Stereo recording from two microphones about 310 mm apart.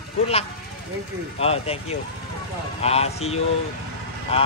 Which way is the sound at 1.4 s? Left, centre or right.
Centre.